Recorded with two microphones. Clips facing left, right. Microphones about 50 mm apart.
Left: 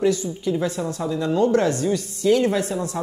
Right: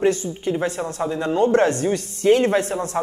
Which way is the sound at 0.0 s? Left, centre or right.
Right.